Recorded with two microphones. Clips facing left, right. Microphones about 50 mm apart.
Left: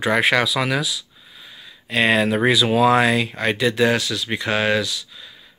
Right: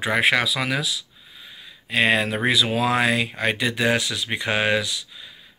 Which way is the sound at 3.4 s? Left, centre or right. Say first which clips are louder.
Left 6 dB; centre.